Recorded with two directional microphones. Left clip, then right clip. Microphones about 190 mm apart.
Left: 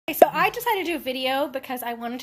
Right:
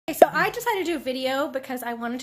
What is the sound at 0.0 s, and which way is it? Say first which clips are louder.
A woman's voice: even; centre (ahead or behind).